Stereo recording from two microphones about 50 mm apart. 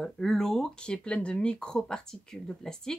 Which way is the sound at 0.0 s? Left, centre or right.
Centre.